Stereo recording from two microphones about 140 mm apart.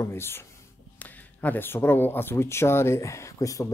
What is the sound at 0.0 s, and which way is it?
Speech, 15° left (ahead or behind).